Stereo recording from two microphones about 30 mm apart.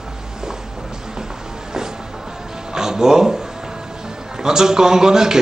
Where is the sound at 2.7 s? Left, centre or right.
Centre.